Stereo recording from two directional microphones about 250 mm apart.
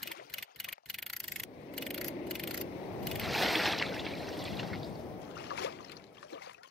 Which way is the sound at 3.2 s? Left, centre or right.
Centre.